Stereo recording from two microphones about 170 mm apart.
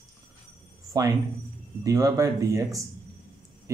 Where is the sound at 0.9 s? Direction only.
20° right (ahead or behind).